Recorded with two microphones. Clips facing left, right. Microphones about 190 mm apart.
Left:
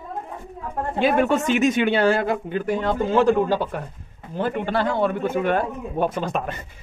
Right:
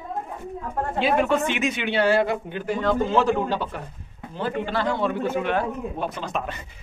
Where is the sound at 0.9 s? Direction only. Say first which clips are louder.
Left 2 dB; 50° left (ahead or behind).